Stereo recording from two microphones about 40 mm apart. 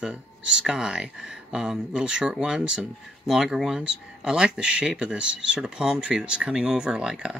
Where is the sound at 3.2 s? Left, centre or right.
Centre.